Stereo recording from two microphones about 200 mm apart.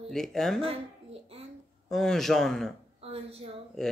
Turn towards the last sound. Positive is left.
turn(degrees=0)  # may be behind; listen again after turning